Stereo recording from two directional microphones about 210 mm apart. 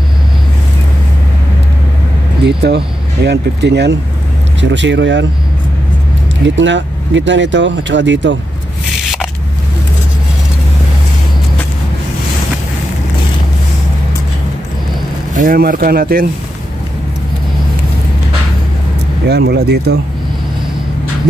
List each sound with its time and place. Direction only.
2.4 s speech: 50° right (ahead or behind)
6.4 s speech: 60° right (ahead or behind)
15.3 s speech: 40° right (ahead or behind)
19.2 s speech: 50° right (ahead or behind)